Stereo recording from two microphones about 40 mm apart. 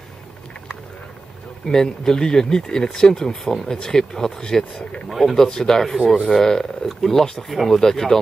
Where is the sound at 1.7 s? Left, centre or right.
Centre.